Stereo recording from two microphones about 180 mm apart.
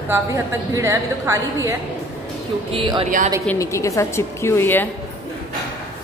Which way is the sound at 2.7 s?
30° right (ahead or behind).